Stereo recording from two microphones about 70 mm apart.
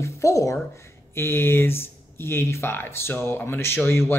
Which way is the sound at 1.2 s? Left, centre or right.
Left.